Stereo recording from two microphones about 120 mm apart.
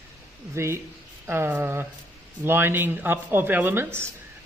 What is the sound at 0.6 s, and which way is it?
Speech, 25° right (ahead or behind).